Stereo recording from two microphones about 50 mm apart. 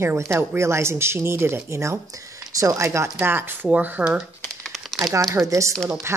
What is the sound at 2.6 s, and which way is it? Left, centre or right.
Speech, right.